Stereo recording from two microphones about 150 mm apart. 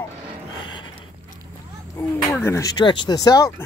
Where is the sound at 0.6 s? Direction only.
30° left (ahead or behind).